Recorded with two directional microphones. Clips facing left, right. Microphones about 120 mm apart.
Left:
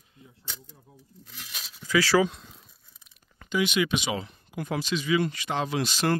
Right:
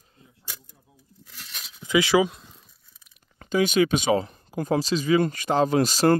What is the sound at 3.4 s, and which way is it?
Speech, 40° right (ahead or behind).